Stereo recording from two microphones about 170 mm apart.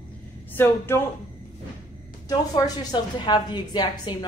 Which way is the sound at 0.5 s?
15° left (ahead or behind).